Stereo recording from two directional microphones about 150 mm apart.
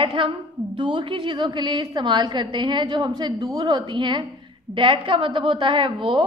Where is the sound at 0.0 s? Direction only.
35° right (ahead or behind).